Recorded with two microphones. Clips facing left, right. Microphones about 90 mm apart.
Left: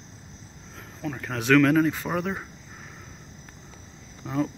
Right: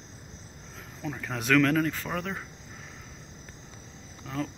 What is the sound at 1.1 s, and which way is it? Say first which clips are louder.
Speech: left 4 dB; centre (ahead or behind).